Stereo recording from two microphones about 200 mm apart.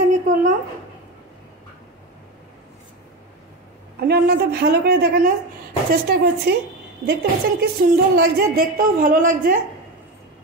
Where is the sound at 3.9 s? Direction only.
55° right (ahead or behind).